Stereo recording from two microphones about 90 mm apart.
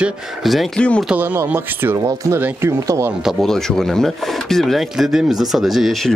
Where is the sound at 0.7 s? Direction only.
10° left (ahead or behind).